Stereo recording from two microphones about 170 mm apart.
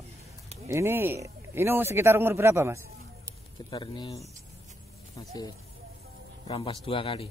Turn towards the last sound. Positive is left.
turn(degrees=30)  # may be behind; listen again after turning